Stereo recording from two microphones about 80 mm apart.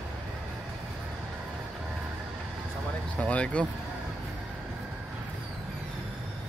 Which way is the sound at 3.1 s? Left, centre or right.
Centre.